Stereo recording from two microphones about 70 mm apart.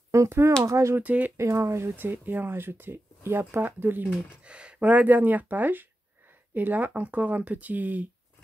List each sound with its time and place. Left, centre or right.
0.3 s speech: right
0.9 s speech: right
1.3 s speech: right
2.0 s speech: right
4.1 s speech: centre